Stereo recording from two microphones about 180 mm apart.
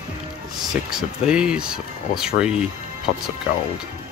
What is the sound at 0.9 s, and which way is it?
Speech, 5° right (ahead or behind).